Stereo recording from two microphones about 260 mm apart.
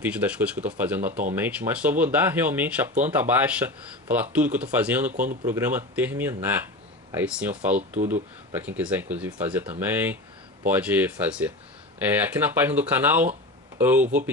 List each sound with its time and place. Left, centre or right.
0.0 s speech: centre
5.1 s speech: right
5.4 s speech: centre